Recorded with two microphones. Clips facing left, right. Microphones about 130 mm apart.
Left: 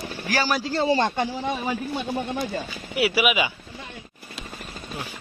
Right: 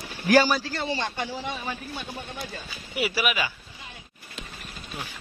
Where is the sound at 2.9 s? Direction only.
5° left (ahead or behind).